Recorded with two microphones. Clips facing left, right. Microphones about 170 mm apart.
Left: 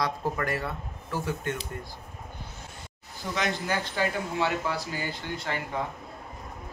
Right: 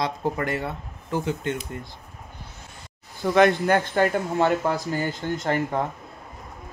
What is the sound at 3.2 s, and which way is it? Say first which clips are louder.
Speech: right 12 dB; 55° right (ahead or behind).